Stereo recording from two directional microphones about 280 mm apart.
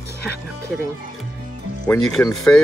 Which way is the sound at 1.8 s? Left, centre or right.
Centre.